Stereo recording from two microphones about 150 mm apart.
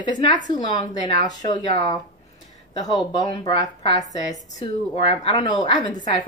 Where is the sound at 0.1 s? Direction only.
30° left (ahead or behind).